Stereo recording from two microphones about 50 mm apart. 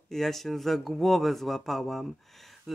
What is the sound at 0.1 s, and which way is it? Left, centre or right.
Speech, centre.